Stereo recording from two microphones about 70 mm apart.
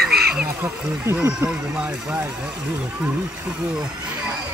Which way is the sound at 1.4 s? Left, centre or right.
Centre.